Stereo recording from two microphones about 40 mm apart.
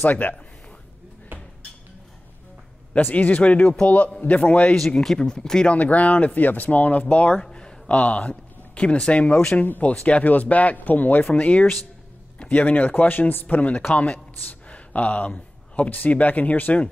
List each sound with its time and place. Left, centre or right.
0.0 s speech: left
3.0 s speech: left
3.6 s a man's voice: left
4.2 s speech: left
4.7 s speech: centre
5.7 s speech: left
11.3 s speech: left
13.6 s speech: left